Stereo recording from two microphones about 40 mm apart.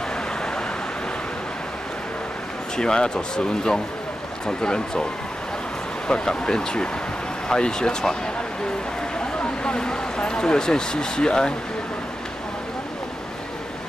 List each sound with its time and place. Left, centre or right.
2.8 s speech: centre
6.0 s speech: left
9.4 s a sound: left
9.8 s speech: centre